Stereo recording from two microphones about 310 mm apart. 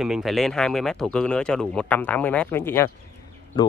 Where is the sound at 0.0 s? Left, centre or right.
Centre.